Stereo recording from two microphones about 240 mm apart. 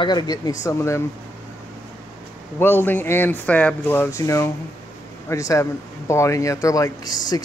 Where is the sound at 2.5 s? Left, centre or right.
Centre.